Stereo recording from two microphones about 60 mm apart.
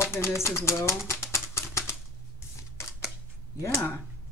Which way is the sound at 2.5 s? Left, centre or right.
Left.